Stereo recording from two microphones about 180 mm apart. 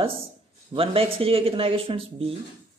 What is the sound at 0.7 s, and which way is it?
Speech, 30° right (ahead or behind).